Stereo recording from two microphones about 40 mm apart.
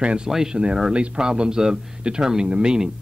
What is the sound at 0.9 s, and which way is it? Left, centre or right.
Speech, right.